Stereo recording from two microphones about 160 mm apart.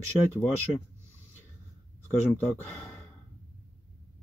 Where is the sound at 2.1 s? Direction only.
10° left (ahead or behind).